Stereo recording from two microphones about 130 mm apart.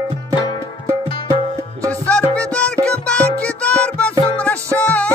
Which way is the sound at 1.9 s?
10° left (ahead or behind).